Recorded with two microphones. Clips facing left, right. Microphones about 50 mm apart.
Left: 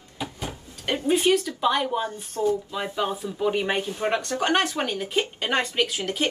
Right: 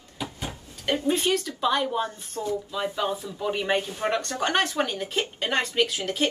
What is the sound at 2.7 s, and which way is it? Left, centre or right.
Speech, left.